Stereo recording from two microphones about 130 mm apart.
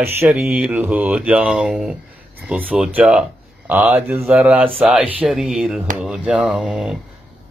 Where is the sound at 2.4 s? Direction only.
10° right (ahead or behind).